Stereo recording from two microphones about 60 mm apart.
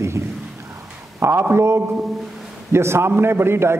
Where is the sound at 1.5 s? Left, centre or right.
Right.